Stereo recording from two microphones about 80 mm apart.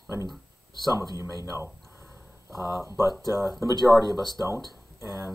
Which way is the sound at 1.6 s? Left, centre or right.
Right.